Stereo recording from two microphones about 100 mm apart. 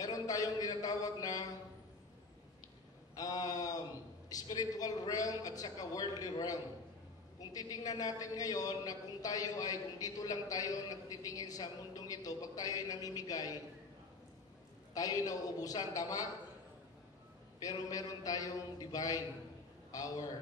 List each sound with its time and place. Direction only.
0.0 s a man's voice: 40° left (ahead or behind)
3.2 s a man's voice: 40° left (ahead or behind)
15.0 s a man's voice: 35° left (ahead or behind)
17.6 s a man's voice: 35° left (ahead or behind)